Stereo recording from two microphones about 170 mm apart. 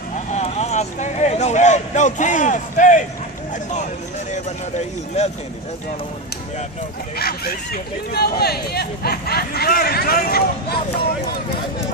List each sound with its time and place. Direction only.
0.3 s a sound: 40° left (ahead or behind)
4.3 s speech: 40° left (ahead or behind)
7.2 s speech: 65° left (ahead or behind)